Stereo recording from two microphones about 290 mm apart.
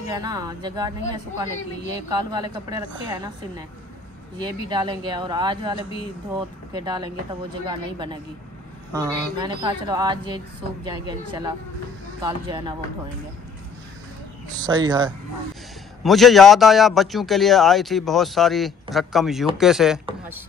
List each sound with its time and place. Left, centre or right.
0.0 s a woman's voice: centre
14.6 s a woman's voice: centre
16.0 s a man's voice: centre